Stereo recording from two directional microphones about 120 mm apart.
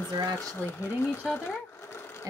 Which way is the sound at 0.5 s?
20° left (ahead or behind).